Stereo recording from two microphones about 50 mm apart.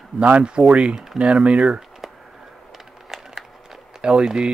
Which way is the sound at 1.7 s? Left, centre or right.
Centre.